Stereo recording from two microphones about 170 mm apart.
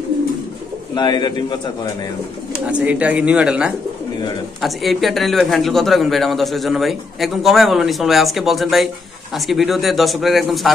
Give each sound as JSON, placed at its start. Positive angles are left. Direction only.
{"t": 0.9, "sound": "speech", "side_deg": 25}
{"t": 2.5, "sound": "speech", "side_deg": -5}